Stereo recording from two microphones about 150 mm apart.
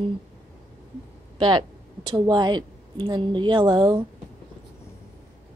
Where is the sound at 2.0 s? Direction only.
30° right (ahead or behind).